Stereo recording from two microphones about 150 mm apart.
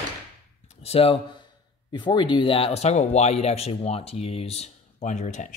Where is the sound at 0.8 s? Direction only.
40° left (ahead or behind).